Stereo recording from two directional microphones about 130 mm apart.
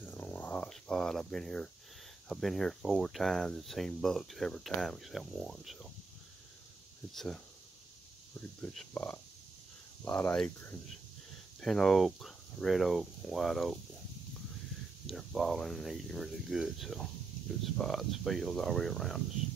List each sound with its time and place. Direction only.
0.0 s a sound: 15° left (ahead or behind)
2.2 s speech: centre (ahead or behind)
8.4 s speech: 15° left (ahead or behind)
15.0 s speech: centre (ahead or behind)